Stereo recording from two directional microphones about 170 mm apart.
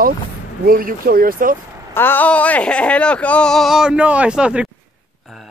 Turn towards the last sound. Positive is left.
turn(degrees=-5)  # may be behind; listen again after turning